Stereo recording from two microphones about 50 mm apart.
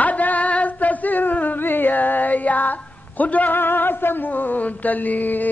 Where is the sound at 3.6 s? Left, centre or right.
Left.